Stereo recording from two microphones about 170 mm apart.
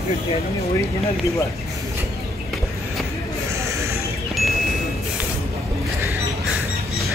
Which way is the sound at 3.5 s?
15° right (ahead or behind).